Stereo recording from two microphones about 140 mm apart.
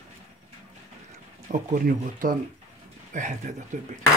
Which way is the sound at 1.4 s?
60° right (ahead or behind).